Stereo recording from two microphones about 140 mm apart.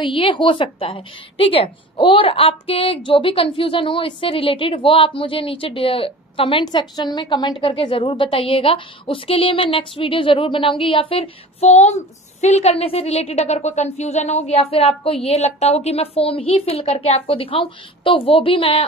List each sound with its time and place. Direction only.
0.0 s a woman's voice: 35° left (ahead or behind)